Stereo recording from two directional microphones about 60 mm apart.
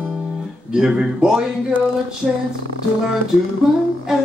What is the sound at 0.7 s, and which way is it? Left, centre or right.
Speech, centre.